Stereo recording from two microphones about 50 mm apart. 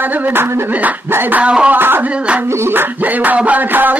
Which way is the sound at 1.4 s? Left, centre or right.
Right.